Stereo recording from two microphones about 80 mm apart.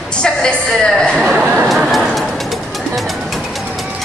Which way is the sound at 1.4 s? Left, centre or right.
Right.